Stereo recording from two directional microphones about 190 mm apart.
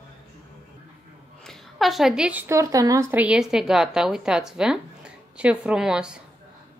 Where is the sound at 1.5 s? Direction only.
Centre (ahead or behind).